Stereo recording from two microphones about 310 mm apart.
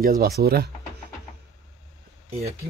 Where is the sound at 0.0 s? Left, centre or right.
Right.